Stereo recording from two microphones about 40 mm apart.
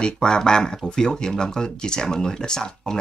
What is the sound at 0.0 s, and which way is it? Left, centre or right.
Speech, centre.